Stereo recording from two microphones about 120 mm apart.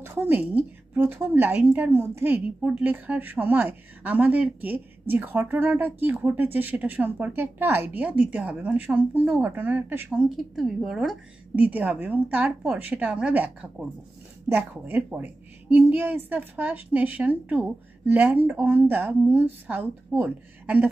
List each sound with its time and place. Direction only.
0.0 s a woman's voice: 20° right (ahead or behind)
10.1 s a woman's voice: 5° right (ahead or behind)
11.5 s a woman's voice: 10° right (ahead or behind)